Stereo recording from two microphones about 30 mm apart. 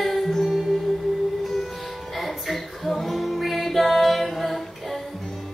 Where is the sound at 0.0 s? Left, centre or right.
Centre.